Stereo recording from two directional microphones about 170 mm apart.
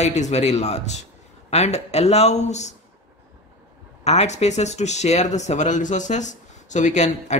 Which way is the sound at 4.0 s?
40° left (ahead or behind).